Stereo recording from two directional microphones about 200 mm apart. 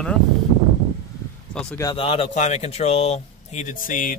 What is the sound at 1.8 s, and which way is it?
Speech, 25° left (ahead or behind).